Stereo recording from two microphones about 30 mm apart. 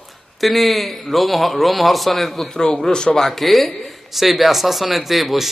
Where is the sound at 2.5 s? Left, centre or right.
Centre.